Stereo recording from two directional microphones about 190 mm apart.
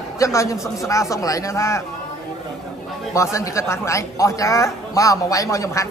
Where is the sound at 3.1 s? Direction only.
15° left (ahead or behind).